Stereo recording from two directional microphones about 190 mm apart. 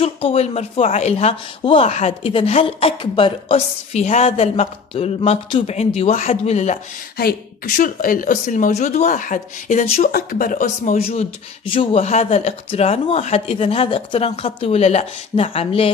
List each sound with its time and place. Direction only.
0.0 s speech: 30° left (ahead or behind)
7.2 s speech: 50° left (ahead or behind); by 15.9 s 30° left (ahead or behind)